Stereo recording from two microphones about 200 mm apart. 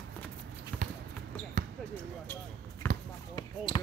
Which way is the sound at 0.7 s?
5° left (ahead or behind).